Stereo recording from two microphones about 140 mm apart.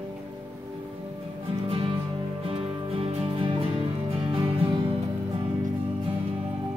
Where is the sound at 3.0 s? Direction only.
45° right (ahead or behind).